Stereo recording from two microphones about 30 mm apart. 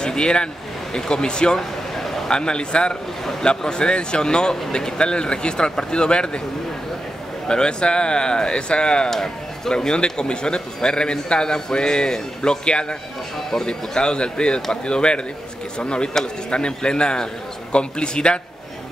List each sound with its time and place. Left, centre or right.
0.0 s speech: left
2.0 s a sound: centre
2.2 s speech: left
7.4 s speech: left
9.1 s speech: centre
13.7 s speech: left